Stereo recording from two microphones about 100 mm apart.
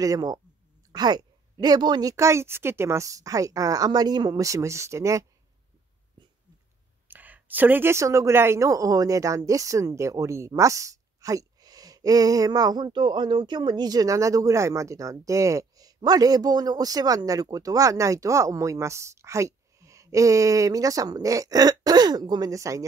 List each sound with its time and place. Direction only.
0.0 s a woman's voice: 40° right (ahead or behind)
7.1 s a woman's voice: 15° right (ahead or behind); by 22.8 s 35° right (ahead or behind)